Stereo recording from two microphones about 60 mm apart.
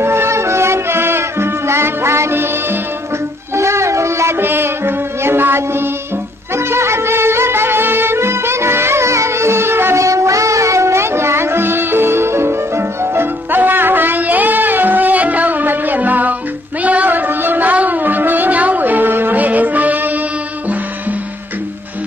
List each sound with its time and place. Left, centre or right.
0.0 s music: right
3.5 s a sound: right
4.4 s music: right
9.9 s music: right